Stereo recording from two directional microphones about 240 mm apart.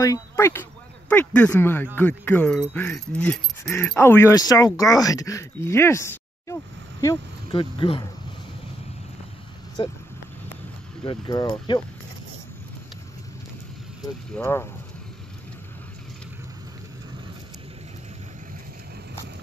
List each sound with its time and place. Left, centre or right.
0.0 s speech: centre
9.8 s speech: left
11.1 s speech: centre
14.3 s speech: centre